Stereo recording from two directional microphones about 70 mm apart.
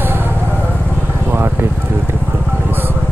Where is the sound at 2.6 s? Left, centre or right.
Right.